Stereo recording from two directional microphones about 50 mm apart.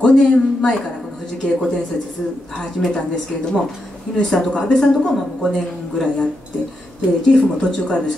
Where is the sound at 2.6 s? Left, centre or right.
Centre.